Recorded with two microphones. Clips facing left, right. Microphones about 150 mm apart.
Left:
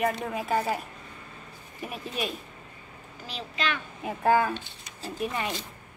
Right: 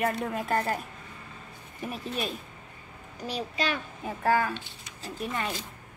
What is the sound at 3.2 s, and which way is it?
Speech, 40° right (ahead or behind).